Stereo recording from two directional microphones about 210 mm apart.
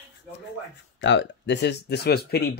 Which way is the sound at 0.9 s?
60° left (ahead or behind).